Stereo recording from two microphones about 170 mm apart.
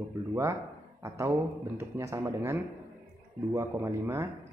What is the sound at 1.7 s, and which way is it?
Speech, 15° right (ahead or behind).